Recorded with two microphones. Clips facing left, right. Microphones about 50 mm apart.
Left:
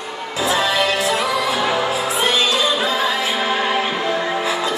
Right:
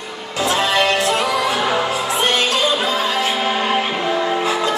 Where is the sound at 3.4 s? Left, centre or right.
Centre.